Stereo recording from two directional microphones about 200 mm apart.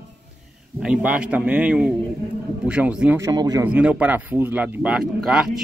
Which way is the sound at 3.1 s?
20° right (ahead or behind).